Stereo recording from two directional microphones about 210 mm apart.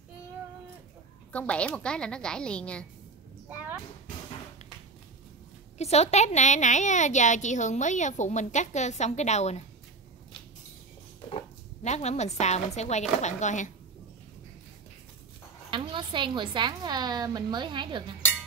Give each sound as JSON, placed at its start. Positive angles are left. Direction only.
{"t": 1.3, "sound": "a woman's voice", "side_deg": 5}
{"t": 3.4, "sound": "a sound", "side_deg": -10}
{"t": 5.8, "sound": "a woman's voice", "side_deg": 30}
{"t": 11.2, "sound": "a woman's voice", "side_deg": 30}
{"t": 15.7, "sound": "a woman's voice", "side_deg": -25}